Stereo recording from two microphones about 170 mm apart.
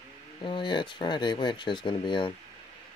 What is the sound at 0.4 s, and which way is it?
Speech, 30° left (ahead or behind).